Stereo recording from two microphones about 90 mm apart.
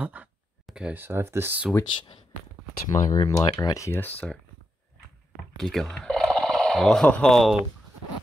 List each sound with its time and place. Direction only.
0.0 s a sound: 15° right (ahead or behind)
0.9 s speech: 25° right (ahead or behind)
2.9 s speech: 45° left (ahead or behind)
3.9 s speech: 20° left (ahead or behind)
5.6 s speech: 5° left (ahead or behind)
5.9 s a sound: 5° left (ahead or behind)
7.1 s speech: 5° left (ahead or behind)